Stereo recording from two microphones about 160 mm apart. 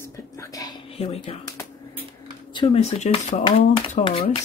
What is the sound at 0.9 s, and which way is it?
Speech, 40° left (ahead or behind).